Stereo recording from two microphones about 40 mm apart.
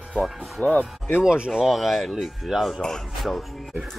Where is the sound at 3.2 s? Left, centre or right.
Centre.